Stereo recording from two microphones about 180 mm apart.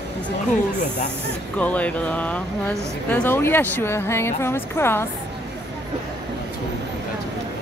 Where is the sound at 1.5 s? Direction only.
10° left (ahead or behind).